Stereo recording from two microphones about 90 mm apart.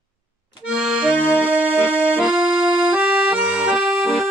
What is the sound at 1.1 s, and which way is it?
Music, 20° left (ahead or behind).